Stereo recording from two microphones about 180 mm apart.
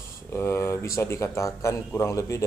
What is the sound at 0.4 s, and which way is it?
A man's voice, 15° left (ahead or behind).